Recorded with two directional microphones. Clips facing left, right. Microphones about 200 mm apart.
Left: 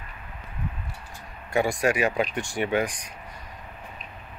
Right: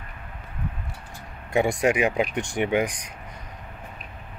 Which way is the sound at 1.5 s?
20° right (ahead or behind).